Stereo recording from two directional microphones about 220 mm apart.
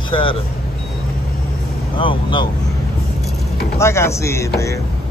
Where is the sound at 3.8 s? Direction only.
10° left (ahead or behind).